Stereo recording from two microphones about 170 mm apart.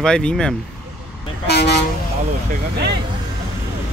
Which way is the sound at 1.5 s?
80° left.